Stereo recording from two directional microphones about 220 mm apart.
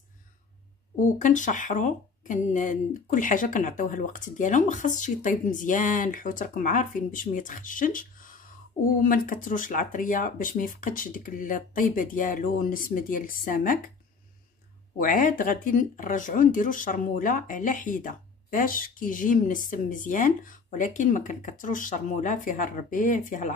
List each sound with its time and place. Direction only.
0.9 s speech: 35° left (ahead or behind)
15.0 s speech: 40° left (ahead or behind)